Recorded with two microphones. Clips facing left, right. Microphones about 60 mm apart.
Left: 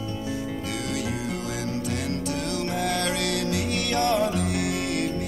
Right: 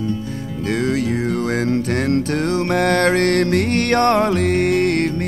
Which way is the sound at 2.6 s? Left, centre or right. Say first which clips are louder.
Right 11 dB; right.